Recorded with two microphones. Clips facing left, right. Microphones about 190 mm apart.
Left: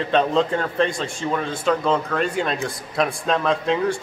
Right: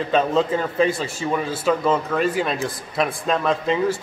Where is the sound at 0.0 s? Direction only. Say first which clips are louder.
Even; 5° right (ahead or behind).